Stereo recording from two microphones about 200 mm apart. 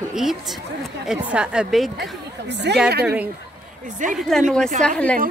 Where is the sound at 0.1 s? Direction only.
Centre (ahead or behind).